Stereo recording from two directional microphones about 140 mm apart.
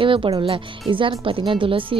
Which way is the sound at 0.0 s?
40° right (ahead or behind).